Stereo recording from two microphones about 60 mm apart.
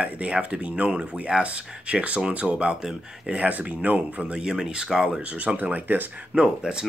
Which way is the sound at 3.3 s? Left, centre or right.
Right.